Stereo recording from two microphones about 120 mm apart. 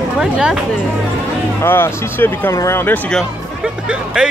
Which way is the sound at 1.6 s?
20° left (ahead or behind).